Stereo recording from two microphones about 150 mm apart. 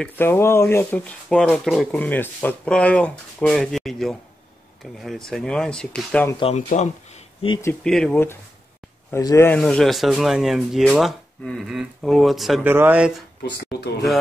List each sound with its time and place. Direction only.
0.0 s speech: 15° left (ahead or behind)
6.4 s speech: 50° left (ahead or behind)
7.8 s speech: 5° left (ahead or behind); by 9.5 s 20° left (ahead or behind)
9.5 s speech: 5° left (ahead or behind)
12.6 s speech: 15° right (ahead or behind)
13.4 s a sound: 90° left